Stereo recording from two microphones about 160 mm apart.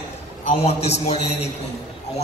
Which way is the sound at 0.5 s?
40° left (ahead or behind).